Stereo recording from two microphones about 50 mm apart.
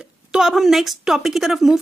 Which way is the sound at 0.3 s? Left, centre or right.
Centre.